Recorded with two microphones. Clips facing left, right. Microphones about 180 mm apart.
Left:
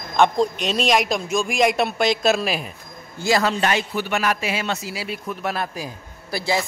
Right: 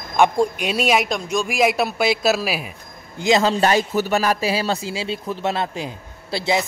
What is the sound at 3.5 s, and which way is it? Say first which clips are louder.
A man's voice: right 4 dB; 35° right (ahead or behind).